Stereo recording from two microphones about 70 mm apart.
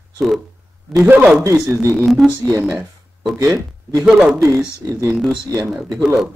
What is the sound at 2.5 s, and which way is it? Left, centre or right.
A man's voice, right.